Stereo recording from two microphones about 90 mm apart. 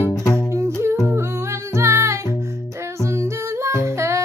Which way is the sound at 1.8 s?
30° right (ahead or behind).